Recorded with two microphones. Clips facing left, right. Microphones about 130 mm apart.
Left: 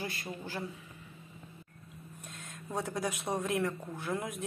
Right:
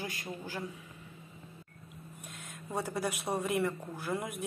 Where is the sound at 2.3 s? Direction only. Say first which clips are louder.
Even; centre (ahead or behind).